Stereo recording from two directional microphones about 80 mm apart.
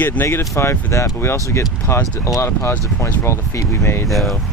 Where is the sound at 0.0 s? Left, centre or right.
Left.